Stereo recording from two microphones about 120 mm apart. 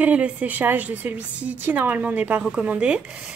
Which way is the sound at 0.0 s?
10° right (ahead or behind).